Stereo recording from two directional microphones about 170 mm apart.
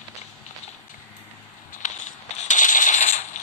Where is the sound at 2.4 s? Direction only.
45° left (ahead or behind).